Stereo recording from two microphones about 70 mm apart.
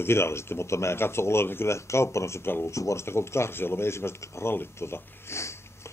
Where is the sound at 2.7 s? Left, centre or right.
Left.